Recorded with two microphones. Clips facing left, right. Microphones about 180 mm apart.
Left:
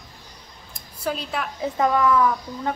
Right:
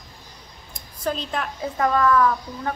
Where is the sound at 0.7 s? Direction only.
10° left (ahead or behind).